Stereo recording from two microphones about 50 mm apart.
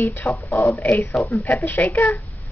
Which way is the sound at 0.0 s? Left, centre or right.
Left.